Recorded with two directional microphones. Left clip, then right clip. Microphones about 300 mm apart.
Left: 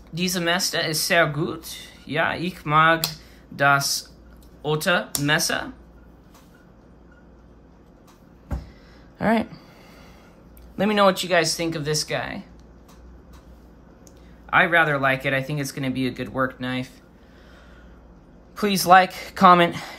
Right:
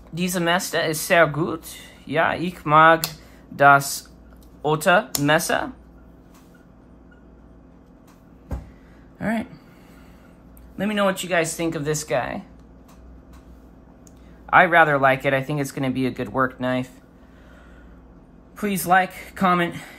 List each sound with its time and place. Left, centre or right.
0.1 s speech: centre
9.2 s a woman's voice: centre
10.8 s speech: centre
14.4 s speech: centre
18.6 s a woman's voice: centre